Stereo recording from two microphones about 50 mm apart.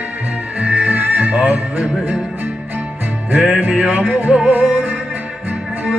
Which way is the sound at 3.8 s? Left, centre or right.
Right.